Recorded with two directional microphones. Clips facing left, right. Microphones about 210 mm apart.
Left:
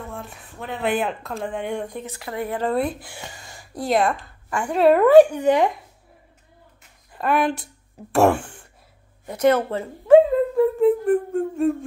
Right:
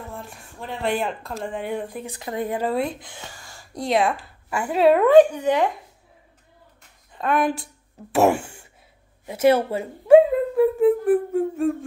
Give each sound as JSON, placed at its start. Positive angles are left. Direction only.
{"t": 0.1, "sound": "speech", "side_deg": 0}
{"t": 2.0, "sound": "speech", "side_deg": -20}
{"t": 2.7, "sound": "speech", "side_deg": 0}
{"t": 3.3, "sound": "a sound", "side_deg": 20}
{"t": 3.7, "sound": "speech", "side_deg": 0}
{"t": 7.1, "sound": "speech", "side_deg": 5}
{"t": 9.2, "sound": "music", "side_deg": -5}